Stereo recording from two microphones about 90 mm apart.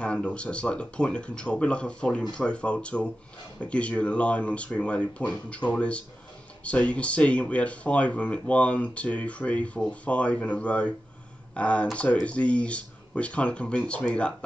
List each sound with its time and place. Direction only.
0.0 s speech: 10° left (ahead or behind)